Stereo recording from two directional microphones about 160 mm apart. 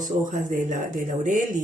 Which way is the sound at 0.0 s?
50° right (ahead or behind).